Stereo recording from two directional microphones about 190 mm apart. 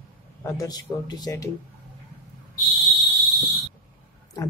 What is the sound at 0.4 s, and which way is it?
Speech, 15° left (ahead or behind).